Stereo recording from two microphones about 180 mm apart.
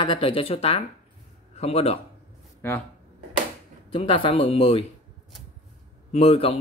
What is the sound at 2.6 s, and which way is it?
Speech, 15° left (ahead or behind).